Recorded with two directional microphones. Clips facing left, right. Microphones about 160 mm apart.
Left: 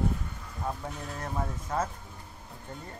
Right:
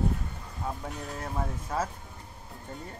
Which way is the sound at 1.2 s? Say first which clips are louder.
Even; 10° right (ahead or behind).